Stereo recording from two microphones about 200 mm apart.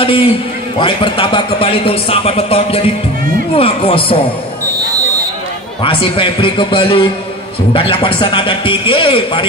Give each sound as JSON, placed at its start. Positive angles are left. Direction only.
{"t": 0.0, "sound": "a man's voice", "side_deg": 25}
{"t": 5.8, "sound": "a man's voice", "side_deg": 25}